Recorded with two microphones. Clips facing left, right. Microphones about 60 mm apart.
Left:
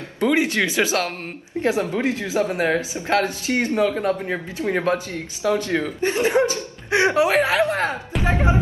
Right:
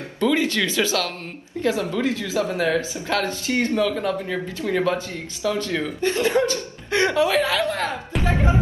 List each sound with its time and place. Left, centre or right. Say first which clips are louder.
0.2 s speech: left 1 dB; left
7.2 s speech: left 2 dB; left